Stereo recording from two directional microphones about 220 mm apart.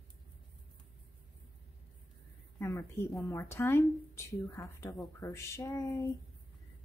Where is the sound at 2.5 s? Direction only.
15° left (ahead or behind).